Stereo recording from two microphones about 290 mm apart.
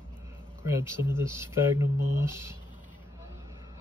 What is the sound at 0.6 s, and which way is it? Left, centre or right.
Speech, centre.